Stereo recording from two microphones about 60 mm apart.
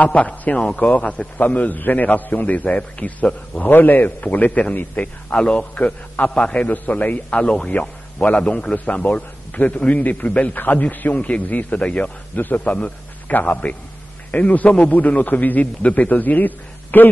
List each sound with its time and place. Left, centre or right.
0.0 s a man's voice: left
6.7 s a man's voice: left